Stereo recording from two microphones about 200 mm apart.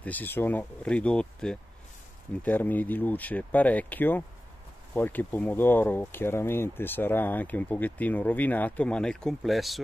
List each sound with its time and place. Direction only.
0.0 s speech: 10° left (ahead or behind)